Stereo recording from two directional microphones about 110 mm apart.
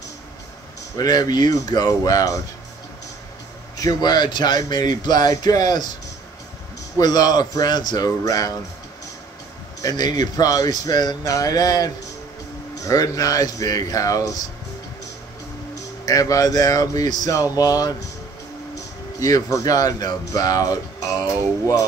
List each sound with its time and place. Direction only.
0.9 s speech: 35° left (ahead or behind)
3.8 s speech: 40° left (ahead or behind)
7.0 s speech: 35° left (ahead or behind)
9.8 s speech: 35° left (ahead or behind)
16.1 s speech: 35° left (ahead or behind)
19.1 s speech: 30° left (ahead or behind)